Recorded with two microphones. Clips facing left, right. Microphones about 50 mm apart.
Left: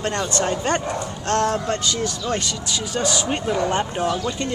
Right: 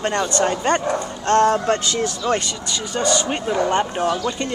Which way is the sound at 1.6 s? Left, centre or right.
Right.